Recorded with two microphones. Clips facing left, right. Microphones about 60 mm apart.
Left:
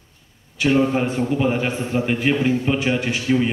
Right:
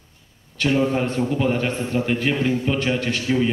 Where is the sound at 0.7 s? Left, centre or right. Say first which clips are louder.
Left 2 dB; left.